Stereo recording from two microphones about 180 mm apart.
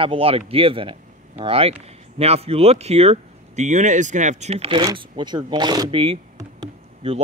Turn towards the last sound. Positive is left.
turn(degrees=-30)  # may be behind; listen again after turning